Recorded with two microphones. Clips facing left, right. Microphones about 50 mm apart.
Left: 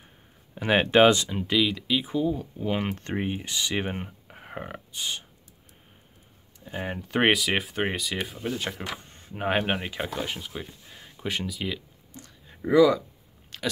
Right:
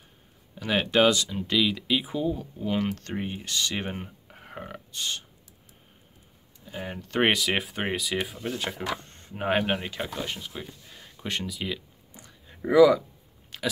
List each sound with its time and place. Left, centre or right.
0.6 s speech: left
1.5 s speech: centre
2.6 s speech: centre
6.8 s speech: centre
12.3 s a sound: centre
13.5 s biting: centre